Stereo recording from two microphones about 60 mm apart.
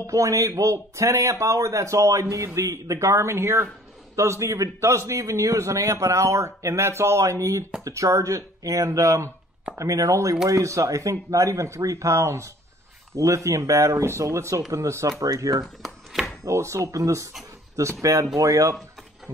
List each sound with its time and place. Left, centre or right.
0.0 s a man's voice: right
9.8 s a man's voice: right
15.6 s speech: centre
16.4 s a man's voice: right
18.3 s speech: right